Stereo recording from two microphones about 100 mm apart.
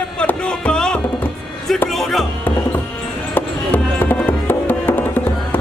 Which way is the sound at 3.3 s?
15° left (ahead or behind).